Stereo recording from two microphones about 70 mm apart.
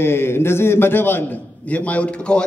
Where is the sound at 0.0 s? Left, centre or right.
Left.